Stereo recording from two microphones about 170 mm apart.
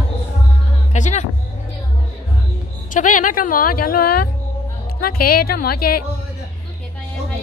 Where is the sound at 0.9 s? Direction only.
45° left (ahead or behind).